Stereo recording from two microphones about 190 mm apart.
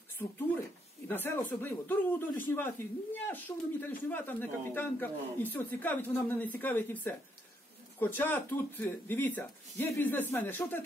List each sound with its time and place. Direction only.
0.2 s speech: 10° left (ahead or behind)